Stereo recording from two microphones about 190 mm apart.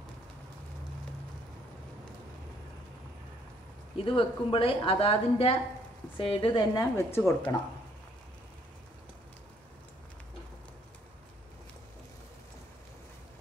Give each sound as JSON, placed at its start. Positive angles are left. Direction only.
{"t": 4.0, "sound": "a woman's voice", "side_deg": 30}